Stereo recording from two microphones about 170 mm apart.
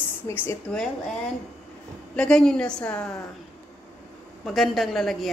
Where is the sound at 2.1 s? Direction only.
5° left (ahead or behind).